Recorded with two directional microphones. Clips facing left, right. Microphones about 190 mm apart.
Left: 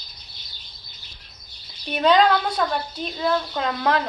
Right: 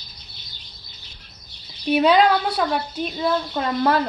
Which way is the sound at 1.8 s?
5° right (ahead or behind).